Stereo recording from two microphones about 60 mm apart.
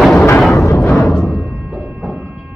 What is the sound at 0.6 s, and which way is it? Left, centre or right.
Music, left.